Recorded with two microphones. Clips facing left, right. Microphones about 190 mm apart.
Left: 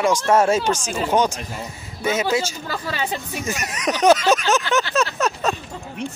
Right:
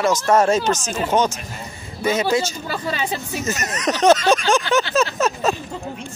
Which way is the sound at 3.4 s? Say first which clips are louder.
Right 2 dB; 10° left (ahead or behind).